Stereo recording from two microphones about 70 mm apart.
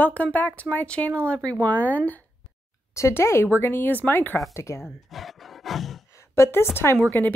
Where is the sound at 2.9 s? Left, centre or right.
Left.